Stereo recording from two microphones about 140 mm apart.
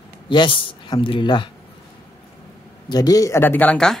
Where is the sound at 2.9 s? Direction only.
25° left (ahead or behind); by 4.0 s 5° left (ahead or behind).